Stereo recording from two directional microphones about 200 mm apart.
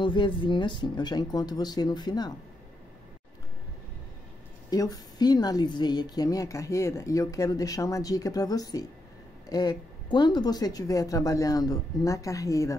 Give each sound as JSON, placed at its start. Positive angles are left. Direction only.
{"t": 0.0, "sound": "speech", "side_deg": 25}
{"t": 4.6, "sound": "a woman's voice", "side_deg": 20}